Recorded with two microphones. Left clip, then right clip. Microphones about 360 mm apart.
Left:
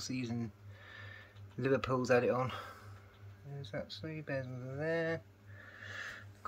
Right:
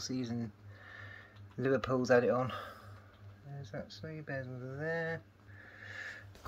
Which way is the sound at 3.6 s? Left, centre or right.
Centre.